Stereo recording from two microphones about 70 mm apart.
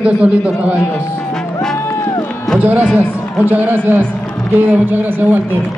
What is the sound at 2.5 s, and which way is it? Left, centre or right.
Music, centre.